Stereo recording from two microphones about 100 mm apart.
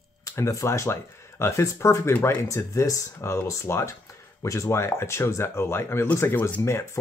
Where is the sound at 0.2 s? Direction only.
30° left (ahead or behind).